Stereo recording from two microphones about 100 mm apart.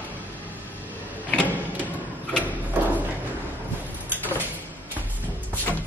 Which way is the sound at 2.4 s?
15° right (ahead or behind).